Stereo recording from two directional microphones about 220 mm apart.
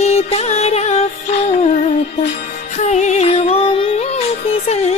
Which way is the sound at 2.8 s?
30° left (ahead or behind).